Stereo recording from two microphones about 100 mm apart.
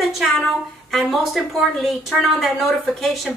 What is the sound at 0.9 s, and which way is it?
A woman's voice, centre (ahead or behind).